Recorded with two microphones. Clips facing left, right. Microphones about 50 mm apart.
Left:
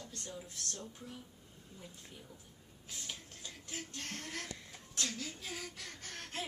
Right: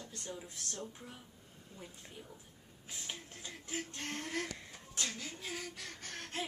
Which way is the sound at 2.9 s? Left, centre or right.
Centre.